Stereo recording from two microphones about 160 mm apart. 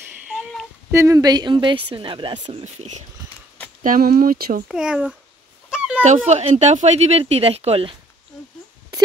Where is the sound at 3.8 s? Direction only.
60° right (ahead or behind).